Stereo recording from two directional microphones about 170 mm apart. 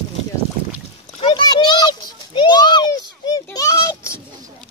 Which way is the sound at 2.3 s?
25° left (ahead or behind).